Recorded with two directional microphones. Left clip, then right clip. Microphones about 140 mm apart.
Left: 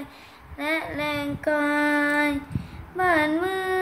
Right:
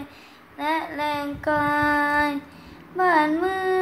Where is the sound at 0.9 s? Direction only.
10° left (ahead or behind).